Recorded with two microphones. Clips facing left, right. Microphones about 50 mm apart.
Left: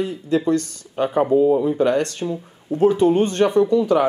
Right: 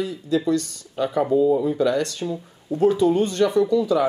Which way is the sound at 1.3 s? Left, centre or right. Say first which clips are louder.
Left 2 dB; left.